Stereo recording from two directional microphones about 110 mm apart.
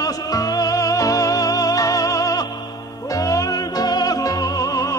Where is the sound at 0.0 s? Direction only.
35° left (ahead or behind).